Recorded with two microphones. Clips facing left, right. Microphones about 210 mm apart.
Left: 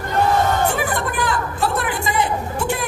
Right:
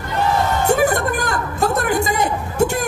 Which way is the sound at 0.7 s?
45° right (ahead or behind).